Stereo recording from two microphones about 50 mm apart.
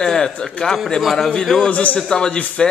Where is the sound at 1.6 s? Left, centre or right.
Left.